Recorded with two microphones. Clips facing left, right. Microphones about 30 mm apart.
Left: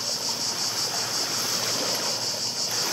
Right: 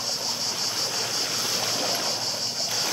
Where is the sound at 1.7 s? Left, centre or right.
Centre.